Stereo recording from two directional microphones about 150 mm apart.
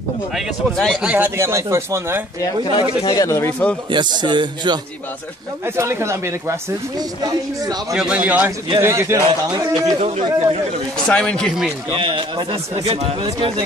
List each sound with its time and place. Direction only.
1.0 s speech: 10° right (ahead or behind)
2.4 s speech: 30° left (ahead or behind)
3.9 s speech: 30° right (ahead or behind)
5.8 s speech: 15° right (ahead or behind)
7.9 s speech: 5° right (ahead or behind)
9.9 s speech: 45° right (ahead or behind)
11.1 s speech: 10° left (ahead or behind)
11.9 s speech: 35° right (ahead or behind)